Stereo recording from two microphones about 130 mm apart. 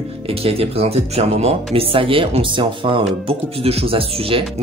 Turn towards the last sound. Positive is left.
turn(degrees=-45)  # may be behind; listen again after turning